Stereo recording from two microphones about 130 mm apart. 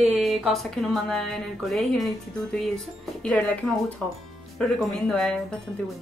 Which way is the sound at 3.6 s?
5° left (ahead or behind).